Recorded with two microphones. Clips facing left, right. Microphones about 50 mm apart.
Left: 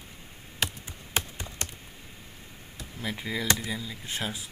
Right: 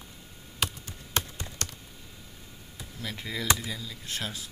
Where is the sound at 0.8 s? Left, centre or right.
Centre.